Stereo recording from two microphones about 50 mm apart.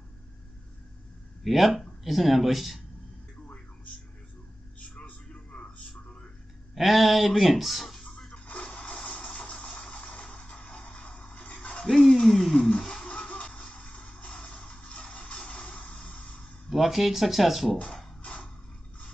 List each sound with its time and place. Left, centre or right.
1.4 s speech: centre
4.9 s a sound: left
6.7 s speech: centre
8.3 s music: centre
10.0 s vehicle: centre
10.8 s music: centre
11.1 s a sound: left
11.8 s speech: centre
12.8 s music: centre; by 14.6 s left
14.7 s a sound: left
15.9 s music: left
16.6 s speech: centre